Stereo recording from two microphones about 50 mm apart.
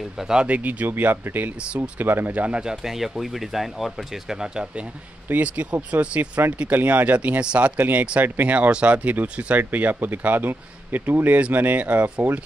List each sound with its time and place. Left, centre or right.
0.4 s speech: right
2.3 s speech: right
2.6 s speech: centre
5.3 s speech: right